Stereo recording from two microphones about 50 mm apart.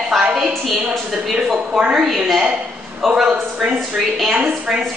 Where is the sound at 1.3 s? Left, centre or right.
Centre.